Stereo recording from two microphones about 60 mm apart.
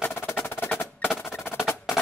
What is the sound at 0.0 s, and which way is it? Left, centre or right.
Percussion, left.